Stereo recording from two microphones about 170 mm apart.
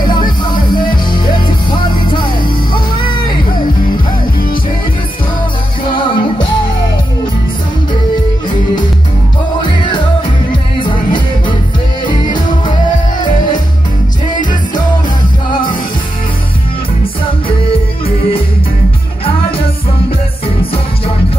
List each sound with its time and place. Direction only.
0.0 s music: 25° left (ahead or behind)
5.9 s music: 30° left (ahead or behind)
9.6 s music: 25° left (ahead or behind)
17.6 s music: 35° left (ahead or behind)